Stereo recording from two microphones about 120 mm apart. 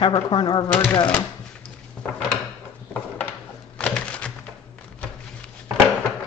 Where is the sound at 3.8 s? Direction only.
10° left (ahead or behind).